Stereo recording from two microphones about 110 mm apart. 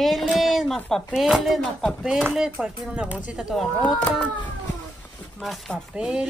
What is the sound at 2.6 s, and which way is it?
Speech, 5° right (ahead or behind).